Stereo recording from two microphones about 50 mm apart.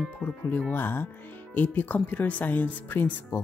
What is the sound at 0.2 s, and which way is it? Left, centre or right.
Speech, left.